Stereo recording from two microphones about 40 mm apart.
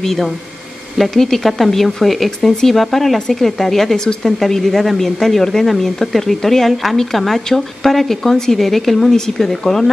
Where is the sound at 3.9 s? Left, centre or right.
Centre.